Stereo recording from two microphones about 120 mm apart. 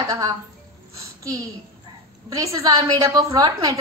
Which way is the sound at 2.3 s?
25° right (ahead or behind).